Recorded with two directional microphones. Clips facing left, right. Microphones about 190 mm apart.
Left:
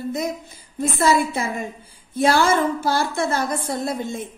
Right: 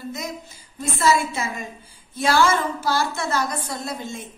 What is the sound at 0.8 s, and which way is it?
Music, 55° left (ahead or behind).